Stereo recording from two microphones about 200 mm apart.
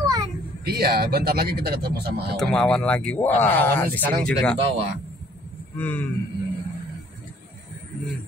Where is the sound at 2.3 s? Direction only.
Centre (ahead or behind).